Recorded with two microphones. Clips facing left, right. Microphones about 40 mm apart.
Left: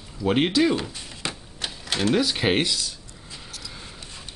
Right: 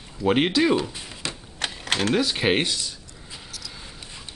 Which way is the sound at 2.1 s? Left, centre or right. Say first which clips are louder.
Left 1 dB; centre.